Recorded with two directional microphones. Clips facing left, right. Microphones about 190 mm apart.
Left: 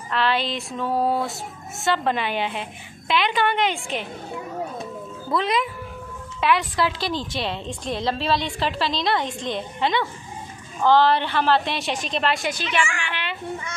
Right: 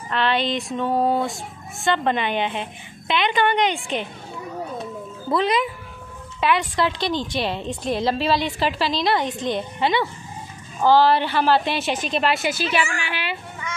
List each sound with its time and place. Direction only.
0.1 s a woman's voice: centre (ahead or behind)
5.3 s a woman's voice: centre (ahead or behind)
12.8 s a woman's voice: 35° right (ahead or behind)
13.1 s a child's voice: 5° right (ahead or behind)